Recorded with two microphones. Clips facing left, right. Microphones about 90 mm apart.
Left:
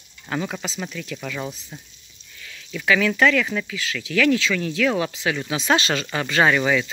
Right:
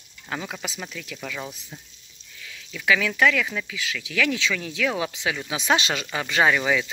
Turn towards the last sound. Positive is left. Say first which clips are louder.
# left 2 dB
turn(degrees=-5)  # may be behind; listen again after turning